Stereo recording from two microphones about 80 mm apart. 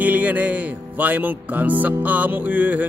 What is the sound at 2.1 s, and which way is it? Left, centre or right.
Music, right.